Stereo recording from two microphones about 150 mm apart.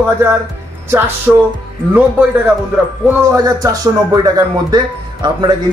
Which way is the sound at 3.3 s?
25° right (ahead or behind).